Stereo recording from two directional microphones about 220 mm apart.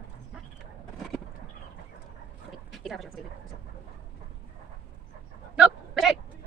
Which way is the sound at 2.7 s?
Centre (ahead or behind).